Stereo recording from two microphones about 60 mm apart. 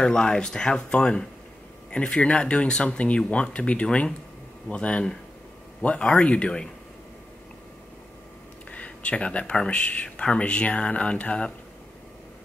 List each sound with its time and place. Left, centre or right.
0.0 s speech: centre
8.7 s speech: left